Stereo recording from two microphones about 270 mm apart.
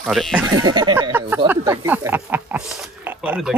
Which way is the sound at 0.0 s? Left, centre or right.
Centre.